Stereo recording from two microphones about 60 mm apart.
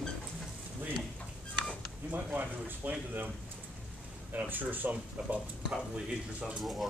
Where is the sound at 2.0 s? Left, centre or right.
Right.